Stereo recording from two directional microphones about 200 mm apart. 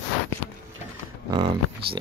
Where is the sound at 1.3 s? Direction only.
25° right (ahead or behind).